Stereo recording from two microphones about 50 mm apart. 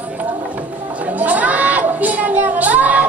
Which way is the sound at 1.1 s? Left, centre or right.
Right.